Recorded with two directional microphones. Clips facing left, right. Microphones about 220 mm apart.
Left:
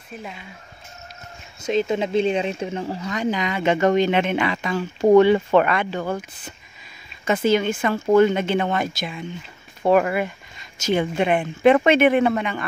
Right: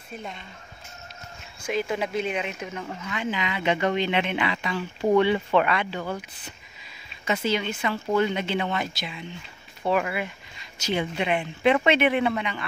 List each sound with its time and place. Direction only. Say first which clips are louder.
0.1 s speech: left 2 dB; 5° left (ahead or behind)
1.6 s speech: left 6 dB; 25° left (ahead or behind); by 12.6 s 50° left (ahead or behind)